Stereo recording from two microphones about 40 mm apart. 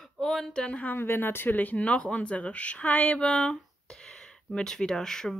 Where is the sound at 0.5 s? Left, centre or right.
Left.